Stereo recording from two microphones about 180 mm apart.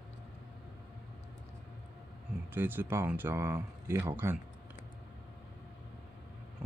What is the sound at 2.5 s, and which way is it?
Speech, 10° right (ahead or behind).